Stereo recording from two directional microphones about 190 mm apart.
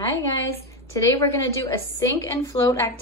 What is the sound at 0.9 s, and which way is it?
A woman's voice, 20° left (ahead or behind).